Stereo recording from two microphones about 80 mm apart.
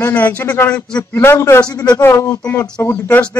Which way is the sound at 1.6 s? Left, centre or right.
Left.